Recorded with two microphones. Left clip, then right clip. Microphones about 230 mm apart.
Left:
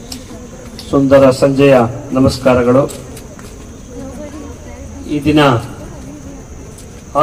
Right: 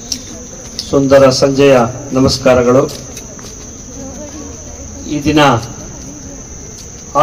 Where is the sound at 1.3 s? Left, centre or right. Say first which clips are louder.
Right 1 dB; right.